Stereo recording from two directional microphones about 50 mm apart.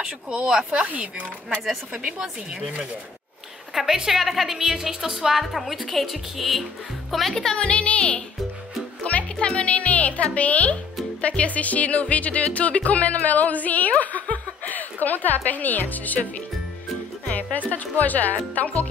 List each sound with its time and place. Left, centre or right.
0.5 s speech: centre
2.0 s a woman's voice: centre
7.5 s speech: left
9.0 s music: left
9.5 s speech: left
17.3 s speech: left